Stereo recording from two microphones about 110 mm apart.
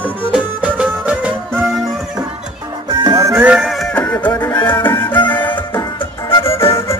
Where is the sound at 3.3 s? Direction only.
15° right (ahead or behind).